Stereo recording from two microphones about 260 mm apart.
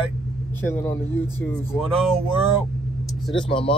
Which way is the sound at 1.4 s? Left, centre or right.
Centre.